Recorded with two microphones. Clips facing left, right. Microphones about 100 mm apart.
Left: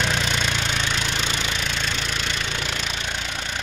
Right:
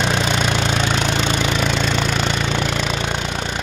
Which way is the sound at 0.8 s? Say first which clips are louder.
Right 7 dB; 40° right (ahead or behind).